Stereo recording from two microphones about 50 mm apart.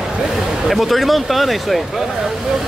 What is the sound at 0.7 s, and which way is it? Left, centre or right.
Speech, centre.